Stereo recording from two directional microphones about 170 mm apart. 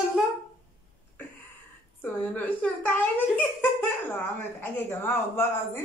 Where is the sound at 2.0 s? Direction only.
10° left (ahead or behind).